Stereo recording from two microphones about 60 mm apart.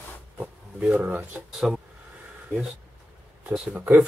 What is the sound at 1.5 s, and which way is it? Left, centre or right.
Speech, centre.